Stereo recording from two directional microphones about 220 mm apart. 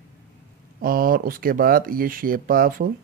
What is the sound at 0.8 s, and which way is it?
Speech, 40° right (ahead or behind).